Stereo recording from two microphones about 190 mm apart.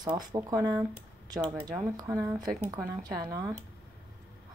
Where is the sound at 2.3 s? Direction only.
5° right (ahead or behind).